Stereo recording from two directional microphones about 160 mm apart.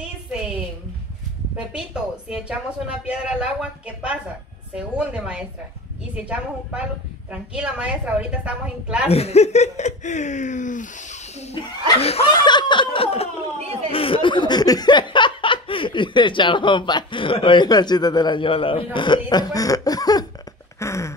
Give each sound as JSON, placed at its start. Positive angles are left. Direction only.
{"t": 1.7, "sound": "a woman's voice", "side_deg": -5}
{"t": 9.1, "sound": "speech", "side_deg": 40}
{"t": 20.8, "sound": "a sound", "side_deg": 20}